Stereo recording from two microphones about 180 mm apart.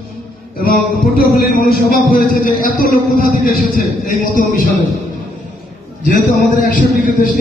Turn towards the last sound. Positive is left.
turn(degrees=55)  # may be behind; listen again after turning